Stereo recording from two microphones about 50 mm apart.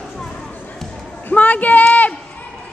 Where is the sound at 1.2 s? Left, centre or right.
Left.